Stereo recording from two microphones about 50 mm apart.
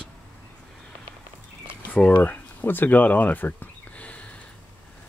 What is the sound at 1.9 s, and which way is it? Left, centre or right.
Speech, left.